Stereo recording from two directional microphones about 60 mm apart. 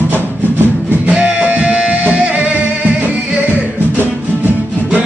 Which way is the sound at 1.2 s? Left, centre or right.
Right.